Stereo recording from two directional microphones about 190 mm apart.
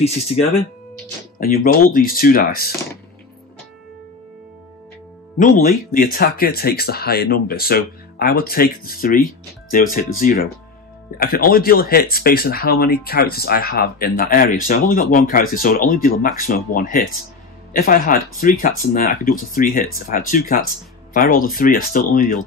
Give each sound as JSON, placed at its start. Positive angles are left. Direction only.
{"t": 0.0, "sound": "speech", "side_deg": 35}
{"t": 1.4, "sound": "speech", "side_deg": 50}
{"t": 5.4, "sound": "speech", "side_deg": 45}